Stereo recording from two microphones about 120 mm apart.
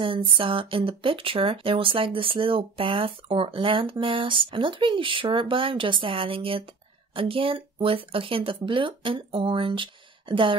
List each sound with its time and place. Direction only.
0.0 s speech: 45° right (ahead or behind)